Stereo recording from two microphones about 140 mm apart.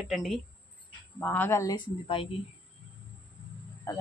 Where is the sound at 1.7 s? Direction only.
40° left (ahead or behind).